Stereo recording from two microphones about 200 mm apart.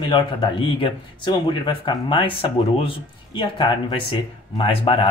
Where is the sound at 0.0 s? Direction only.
25° left (ahead or behind).